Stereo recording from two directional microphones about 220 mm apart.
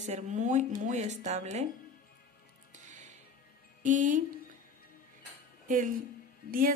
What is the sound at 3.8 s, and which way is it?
Speech, 35° right (ahead or behind).